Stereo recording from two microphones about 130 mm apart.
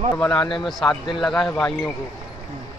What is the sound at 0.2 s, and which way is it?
Speech, 5° left (ahead or behind).